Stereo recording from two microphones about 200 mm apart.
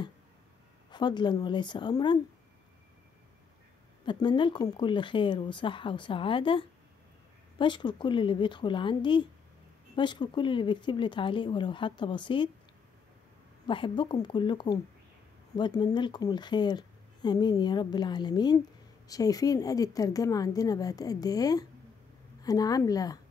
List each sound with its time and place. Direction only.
0.9 s speech: 20° left (ahead or behind)
4.0 s speech: 25° left (ahead or behind)
13.7 s a woman's voice: 25° left (ahead or behind)